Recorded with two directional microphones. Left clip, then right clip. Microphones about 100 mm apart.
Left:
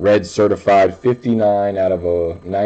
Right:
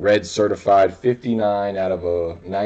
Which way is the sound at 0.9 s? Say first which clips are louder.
Left 3 dB; 20° left (ahead or behind).